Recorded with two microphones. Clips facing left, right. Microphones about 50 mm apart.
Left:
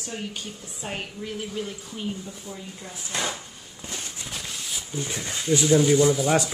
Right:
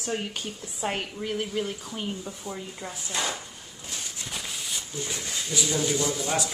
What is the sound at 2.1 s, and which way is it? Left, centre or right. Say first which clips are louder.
Speech: right 1 dB; right.